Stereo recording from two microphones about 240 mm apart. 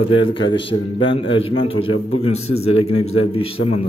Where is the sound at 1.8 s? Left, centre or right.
Left.